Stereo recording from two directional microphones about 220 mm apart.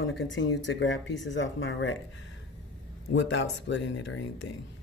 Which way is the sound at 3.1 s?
50° left (ahead or behind).